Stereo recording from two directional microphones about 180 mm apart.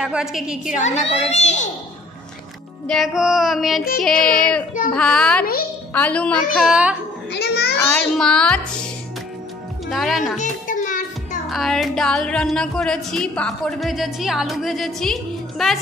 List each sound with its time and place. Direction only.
0.0 s speech: 5° right (ahead or behind)
0.7 s a woman's voice: 40° left (ahead or behind)
2.9 s a woman's voice: centre (ahead or behind)
7.3 s a child's voice: 65° left (ahead or behind)
7.7 s speech: 5° left (ahead or behind)
9.8 s speech: centre (ahead or behind)
10.3 s music: 45° left (ahead or behind)
11.5 s speech: centre (ahead or behind)